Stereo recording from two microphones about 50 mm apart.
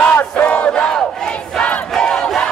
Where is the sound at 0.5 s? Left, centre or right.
Left.